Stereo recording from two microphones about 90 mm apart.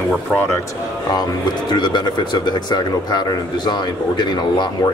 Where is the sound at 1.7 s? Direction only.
55° left (ahead or behind).